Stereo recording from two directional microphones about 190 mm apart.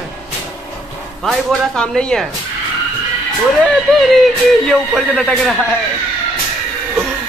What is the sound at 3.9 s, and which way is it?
Speech, centre (ahead or behind).